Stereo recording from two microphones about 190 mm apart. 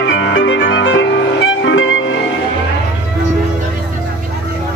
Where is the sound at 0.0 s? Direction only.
75° left (ahead or behind).